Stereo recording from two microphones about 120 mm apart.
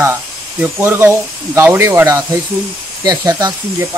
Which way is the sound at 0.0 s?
15° right (ahead or behind).